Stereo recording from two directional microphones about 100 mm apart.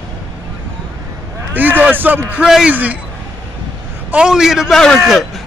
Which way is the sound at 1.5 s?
15° right (ahead or behind).